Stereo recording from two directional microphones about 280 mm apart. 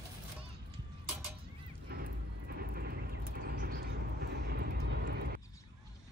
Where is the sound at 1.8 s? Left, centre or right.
Right.